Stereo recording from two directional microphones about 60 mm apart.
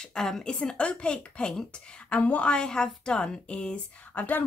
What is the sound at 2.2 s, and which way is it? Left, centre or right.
Speech, left.